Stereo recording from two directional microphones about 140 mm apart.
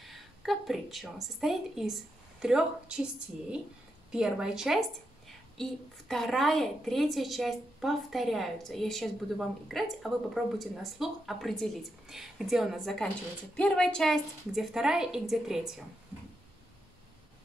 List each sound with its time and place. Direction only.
0.0 s a sound: centre (ahead or behind)
1.2 s a woman's voice: centre (ahead or behind)
4.1 s a woman's voice: 5° right (ahead or behind)